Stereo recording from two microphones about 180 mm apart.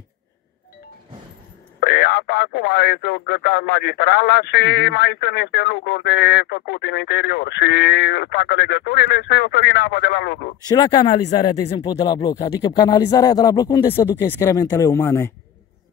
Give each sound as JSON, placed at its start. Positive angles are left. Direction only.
{"t": 1.8, "sound": "speech", "side_deg": 65}
{"t": 10.7, "sound": "speech", "side_deg": 20}